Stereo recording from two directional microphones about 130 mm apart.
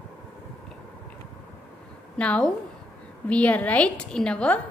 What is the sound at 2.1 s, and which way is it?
A woman's voice, 10° left (ahead or behind).